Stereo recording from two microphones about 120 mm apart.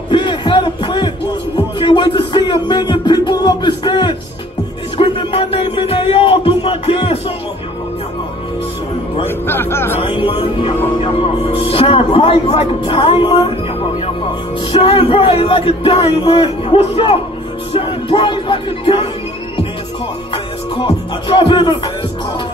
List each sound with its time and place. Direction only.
0.1 s a sound: 40° left (ahead or behind)
4.9 s music: 45° left (ahead or behind)
9.2 s a man's voice: 20° left (ahead or behind)
9.9 s a man's voice: 50° left (ahead or behind)
14.7 s a man's voice: 50° left (ahead or behind)
17.7 s music: 45° left (ahead or behind)
20.8 s a man's voice: 45° left (ahead or behind)